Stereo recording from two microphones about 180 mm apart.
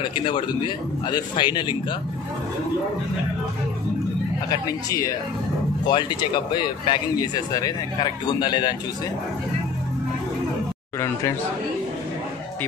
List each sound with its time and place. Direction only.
0.1 s speech: 25° left (ahead or behind)
4.5 s speech: 20° left (ahead or behind)